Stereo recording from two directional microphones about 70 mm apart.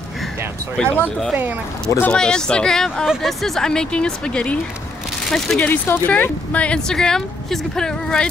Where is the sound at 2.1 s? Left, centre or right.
Centre.